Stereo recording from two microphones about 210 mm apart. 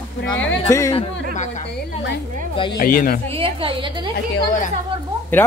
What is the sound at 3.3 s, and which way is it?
Speech, 25° right (ahead or behind).